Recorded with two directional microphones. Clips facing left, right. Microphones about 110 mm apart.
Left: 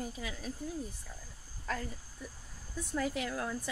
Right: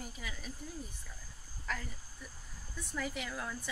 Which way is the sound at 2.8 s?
45° left (ahead or behind).